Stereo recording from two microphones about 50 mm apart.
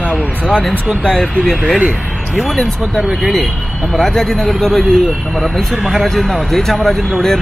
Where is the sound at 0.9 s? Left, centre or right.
Centre.